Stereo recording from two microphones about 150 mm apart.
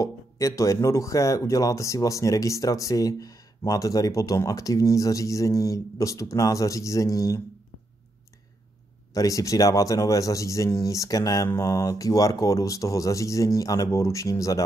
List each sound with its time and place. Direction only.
0.0 s speech: 20° left (ahead or behind)
9.1 s speech: 20° left (ahead or behind)